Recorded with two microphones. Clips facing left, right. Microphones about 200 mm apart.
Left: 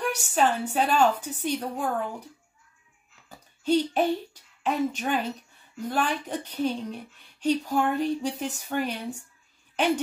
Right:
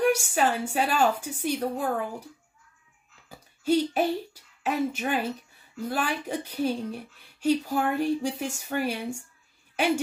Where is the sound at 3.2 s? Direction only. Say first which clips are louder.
Even; 10° right (ahead or behind).